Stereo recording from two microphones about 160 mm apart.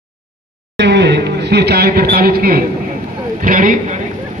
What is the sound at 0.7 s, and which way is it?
A man's voice, 90° right.